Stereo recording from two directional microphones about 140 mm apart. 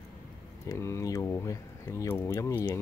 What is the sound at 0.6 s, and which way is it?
Speech, 20° left (ahead or behind).